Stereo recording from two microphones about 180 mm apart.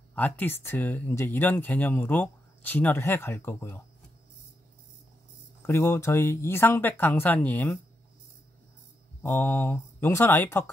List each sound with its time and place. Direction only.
0.1 s speech: 10° left (ahead or behind)
5.7 s speech: 15° left (ahead or behind)
9.2 s speech: 10° left (ahead or behind)